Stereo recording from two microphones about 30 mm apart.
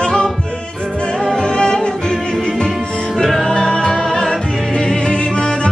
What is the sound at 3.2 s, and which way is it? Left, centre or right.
Music, centre.